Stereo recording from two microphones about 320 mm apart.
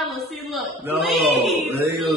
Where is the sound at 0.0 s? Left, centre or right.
Centre.